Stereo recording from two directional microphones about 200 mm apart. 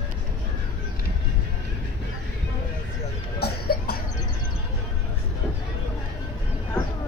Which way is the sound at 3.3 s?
50° left (ahead or behind).